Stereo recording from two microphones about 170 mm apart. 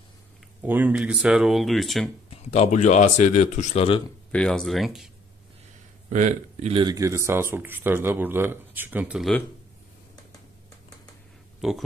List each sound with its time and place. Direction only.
0.6 s speech: 10° right (ahead or behind)
2.3 s speech: 40° left (ahead or behind)
4.3 s speech: 5° left (ahead or behind)
6.0 s speech: 45° right (ahead or behind)
6.7 s speech: 25° right (ahead or behind); by 9.3 s 10° right (ahead or behind)
11.6 s speech: 5° right (ahead or behind)